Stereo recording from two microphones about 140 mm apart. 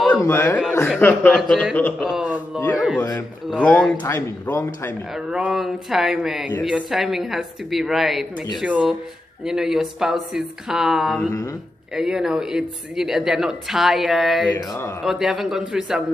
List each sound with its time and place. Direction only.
0.2 s speech: 15° left (ahead or behind)
1.3 s speech: 5° left (ahead or behind)
2.0 s speech: 5° right (ahead or behind)
3.0 s speech: 20° left (ahead or behind)
3.6 s speech: 10° left (ahead or behind)
5.1 s speech: 5° right (ahead or behind)
14.7 s speech: 20° left (ahead or behind)
15.0 s speech: 5° right (ahead or behind)